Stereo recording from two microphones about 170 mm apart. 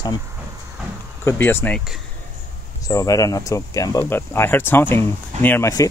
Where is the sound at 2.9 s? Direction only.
20° left (ahead or behind).